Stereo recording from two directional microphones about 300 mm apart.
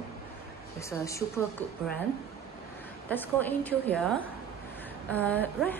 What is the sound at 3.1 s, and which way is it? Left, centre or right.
A woman's voice, centre.